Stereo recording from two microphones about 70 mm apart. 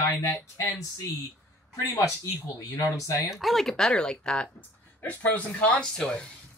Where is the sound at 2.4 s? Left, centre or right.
Left.